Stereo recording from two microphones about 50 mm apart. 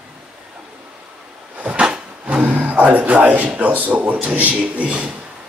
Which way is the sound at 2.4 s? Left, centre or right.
Right.